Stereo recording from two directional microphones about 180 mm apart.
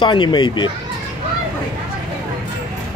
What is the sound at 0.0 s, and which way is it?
Speech, 25° left (ahead or behind).